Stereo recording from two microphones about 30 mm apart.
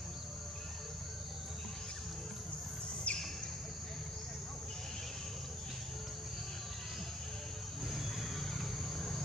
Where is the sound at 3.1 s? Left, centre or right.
Left.